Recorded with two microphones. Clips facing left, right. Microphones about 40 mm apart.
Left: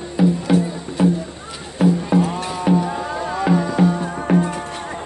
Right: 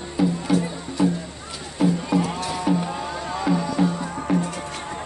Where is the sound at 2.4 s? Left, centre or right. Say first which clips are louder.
Left 4 dB; left.